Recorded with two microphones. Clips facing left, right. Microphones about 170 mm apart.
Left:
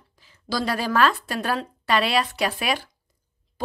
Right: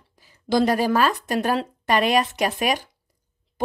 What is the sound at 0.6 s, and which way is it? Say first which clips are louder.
Speech: right 7 dB; 45° right (ahead or behind).